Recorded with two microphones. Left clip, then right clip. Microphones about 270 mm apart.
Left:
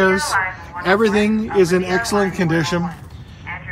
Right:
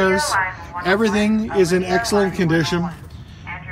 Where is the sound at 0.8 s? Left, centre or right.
Centre.